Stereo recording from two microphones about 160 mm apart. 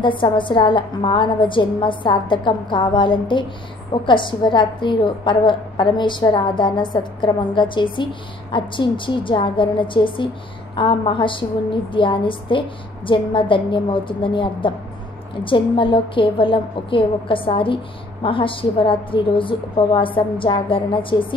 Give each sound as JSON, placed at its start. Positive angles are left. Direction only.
{"t": 0.0, "sound": "a woman's voice", "side_deg": 30}